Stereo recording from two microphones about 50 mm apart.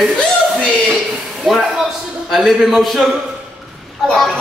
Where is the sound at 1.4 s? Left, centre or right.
Centre.